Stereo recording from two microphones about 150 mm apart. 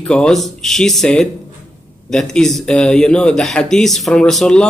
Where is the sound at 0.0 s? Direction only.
5° left (ahead or behind).